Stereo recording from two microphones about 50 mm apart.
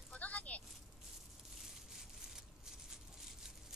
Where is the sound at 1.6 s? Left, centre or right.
Centre.